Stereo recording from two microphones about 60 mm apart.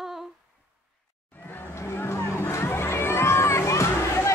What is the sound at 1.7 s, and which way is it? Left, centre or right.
Music, left.